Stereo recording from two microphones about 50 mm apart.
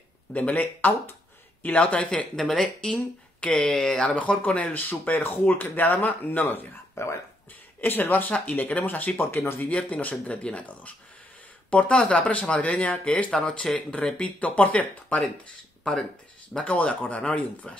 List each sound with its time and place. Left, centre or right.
0.3 s speech: left
1.8 s speech: left
4.0 s speech: left
7.8 s speech: left
8.3 s speech: left
8.8 s speech: left
9.7 s speech: left
13.4 s speech: centre
15.8 s speech: centre
16.5 s speech: left